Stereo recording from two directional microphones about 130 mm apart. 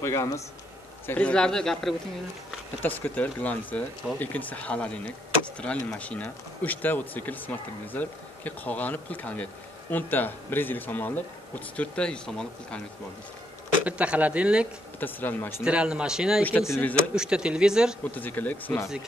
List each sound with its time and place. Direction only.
0.0 s a man's voice: 25° left (ahead or behind)
1.0 s a man's voice: 10° left (ahead or behind)
2.8 s speech: 15° left (ahead or behind)
13.8 s speech: 10° right (ahead or behind)
15.0 s speech: 15° left (ahead or behind)
15.6 s speech: 5° right (ahead or behind)
16.4 s speech: 15° left (ahead or behind)
17.1 s a man's voice: 5° right (ahead or behind)
18.1 s speech: 15° left (ahead or behind)